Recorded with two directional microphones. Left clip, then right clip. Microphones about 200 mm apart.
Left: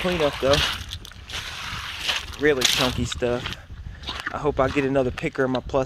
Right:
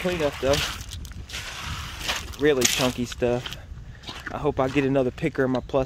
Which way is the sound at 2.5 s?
35° left (ahead or behind).